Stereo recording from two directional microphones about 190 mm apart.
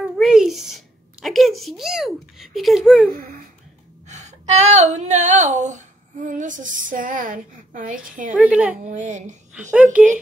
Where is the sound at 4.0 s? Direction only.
40° right (ahead or behind).